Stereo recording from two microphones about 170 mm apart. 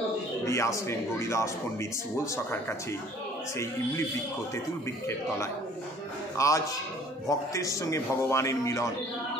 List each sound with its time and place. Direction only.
0.5 s speech: 20° left (ahead or behind)
6.3 s a man's voice: 20° left (ahead or behind)